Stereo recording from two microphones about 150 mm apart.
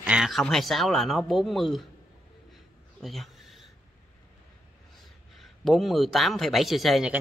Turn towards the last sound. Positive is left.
turn(degrees=0)  # may be behind; listen again after turning